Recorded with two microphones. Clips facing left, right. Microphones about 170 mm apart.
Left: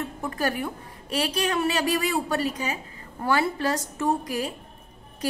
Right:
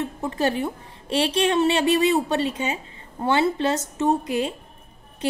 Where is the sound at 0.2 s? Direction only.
25° right (ahead or behind).